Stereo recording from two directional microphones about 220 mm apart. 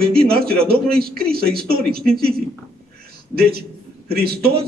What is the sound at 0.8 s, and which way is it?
Speech, 45° right (ahead or behind).